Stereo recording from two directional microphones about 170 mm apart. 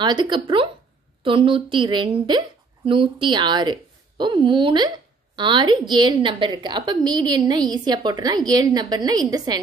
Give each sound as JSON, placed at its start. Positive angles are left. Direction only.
{"t": 0.0, "sound": "a woman's voice", "side_deg": -25}